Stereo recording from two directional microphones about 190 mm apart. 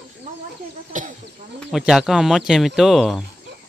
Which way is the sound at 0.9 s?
40° right (ahead or behind).